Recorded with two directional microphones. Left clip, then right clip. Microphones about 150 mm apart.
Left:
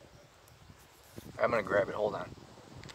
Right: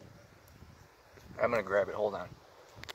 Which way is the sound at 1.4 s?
Centre (ahead or behind).